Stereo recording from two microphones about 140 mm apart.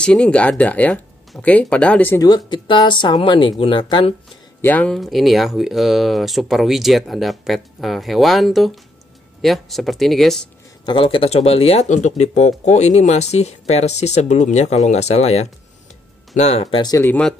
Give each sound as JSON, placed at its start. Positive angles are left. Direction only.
{"t": 0.0, "sound": "speech", "side_deg": 5}
{"t": 2.2, "sound": "speech", "side_deg": 30}
{"t": 4.6, "sound": "speech", "side_deg": 15}
{"t": 10.9, "sound": "speech", "side_deg": 40}
{"t": 16.8, "sound": "speech", "side_deg": 25}
{"t": 17.1, "sound": "speech", "side_deg": 5}